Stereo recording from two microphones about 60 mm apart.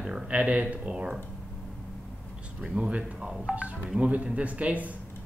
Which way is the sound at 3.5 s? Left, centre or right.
Right.